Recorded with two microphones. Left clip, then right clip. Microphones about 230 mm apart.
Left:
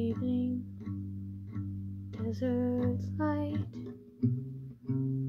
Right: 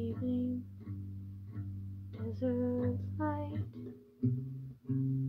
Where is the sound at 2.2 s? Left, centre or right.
Left.